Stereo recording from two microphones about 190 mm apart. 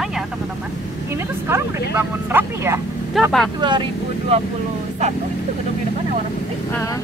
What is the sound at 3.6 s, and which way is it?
Speech, 25° right (ahead or behind).